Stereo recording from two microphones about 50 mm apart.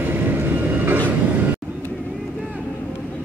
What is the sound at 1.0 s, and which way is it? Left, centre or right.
Train, right.